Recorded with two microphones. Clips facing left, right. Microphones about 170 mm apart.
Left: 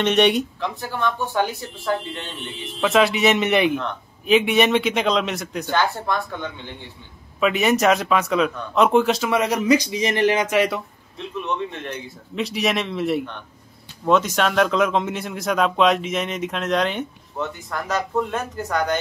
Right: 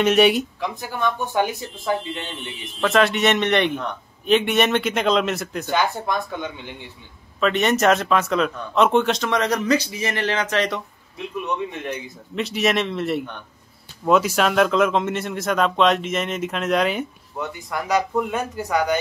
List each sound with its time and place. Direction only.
0.0 s speech: 5° right (ahead or behind)
0.7 s speech: 15° right (ahead or behind)
2.8 s speech: centre (ahead or behind)
5.7 s speech: 15° right (ahead or behind)
7.3 s speech: 5° left (ahead or behind)
11.1 s speech: 15° right (ahead or behind)
12.4 s speech: centre (ahead or behind)